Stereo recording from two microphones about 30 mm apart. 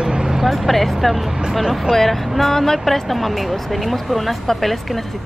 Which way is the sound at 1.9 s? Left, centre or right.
Centre.